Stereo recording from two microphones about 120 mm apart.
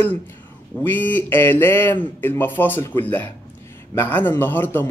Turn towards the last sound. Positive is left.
turn(degrees=15)  # may be behind; listen again after turning